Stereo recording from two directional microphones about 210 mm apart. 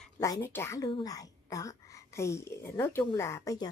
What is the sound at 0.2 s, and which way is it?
A woman's voice, 10° left (ahead or behind).